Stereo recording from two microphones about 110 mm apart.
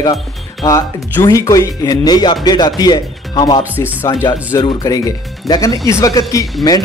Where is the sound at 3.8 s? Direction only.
30° left (ahead or behind).